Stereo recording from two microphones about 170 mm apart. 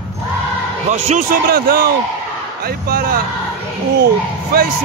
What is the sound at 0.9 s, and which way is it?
Speech, 45° right (ahead or behind).